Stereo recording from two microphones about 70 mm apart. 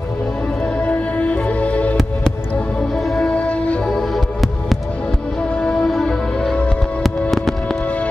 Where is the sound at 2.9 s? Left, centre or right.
Centre.